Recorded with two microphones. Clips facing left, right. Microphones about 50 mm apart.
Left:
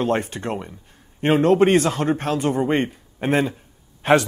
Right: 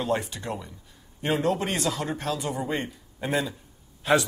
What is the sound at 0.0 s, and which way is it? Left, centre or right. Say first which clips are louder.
Speech: left 6 dB; left.